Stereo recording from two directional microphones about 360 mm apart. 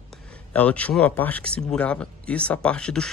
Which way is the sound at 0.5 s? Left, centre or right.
Centre.